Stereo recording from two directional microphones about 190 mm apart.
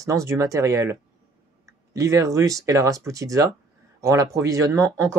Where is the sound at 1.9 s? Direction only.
15° right (ahead or behind).